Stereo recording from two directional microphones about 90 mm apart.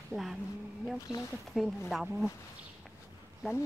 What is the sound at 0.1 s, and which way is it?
Speech, 5° right (ahead or behind).